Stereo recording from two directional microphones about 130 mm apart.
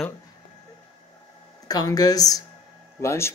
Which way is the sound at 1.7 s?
30° left (ahead or behind).